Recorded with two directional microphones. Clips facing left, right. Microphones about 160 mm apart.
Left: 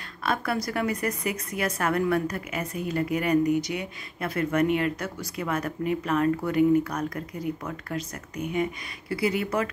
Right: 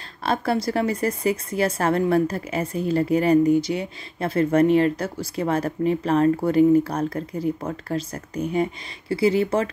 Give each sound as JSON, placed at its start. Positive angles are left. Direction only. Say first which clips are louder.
{"t": 0.2, "sound": "a woman's voice", "louder": "right 5 dB", "side_deg": -30}